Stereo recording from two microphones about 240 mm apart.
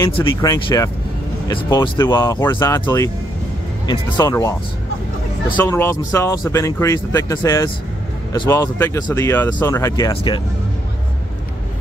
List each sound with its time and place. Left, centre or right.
0.0 s speech: centre